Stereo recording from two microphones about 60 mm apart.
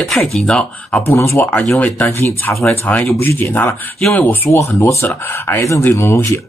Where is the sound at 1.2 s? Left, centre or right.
Left.